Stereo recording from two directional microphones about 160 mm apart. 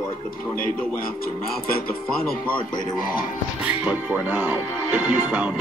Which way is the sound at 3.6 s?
10° right (ahead or behind).